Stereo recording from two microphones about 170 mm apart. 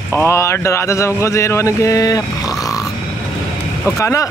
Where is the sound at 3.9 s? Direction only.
15° left (ahead or behind).